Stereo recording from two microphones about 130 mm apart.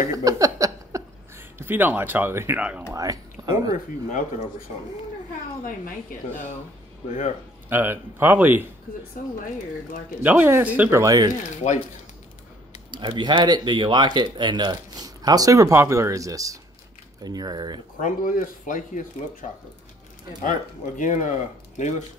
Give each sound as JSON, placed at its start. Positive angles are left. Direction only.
{"t": 0.0, "sound": "a sound", "side_deg": -25}
{"t": 2.9, "sound": "speech", "side_deg": -25}
{"t": 5.9, "sound": "speech", "side_deg": 70}
{"t": 7.1, "sound": "speech", "side_deg": 60}
{"t": 7.7, "sound": "speech", "side_deg": -15}
{"t": 9.2, "sound": "speech", "side_deg": 90}
{"t": 10.2, "sound": "speech", "side_deg": -15}
{"t": 11.5, "sound": "speech", "side_deg": 65}
{"t": 12.9, "sound": "speech", "side_deg": -35}
{"t": 18.0, "sound": "speech", "side_deg": 90}
{"t": 19.4, "sound": "speech", "side_deg": 70}
{"t": 21.0, "sound": "speech", "side_deg": 70}